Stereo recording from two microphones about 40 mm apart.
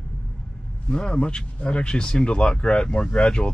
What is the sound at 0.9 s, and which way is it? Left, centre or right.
Speech, left.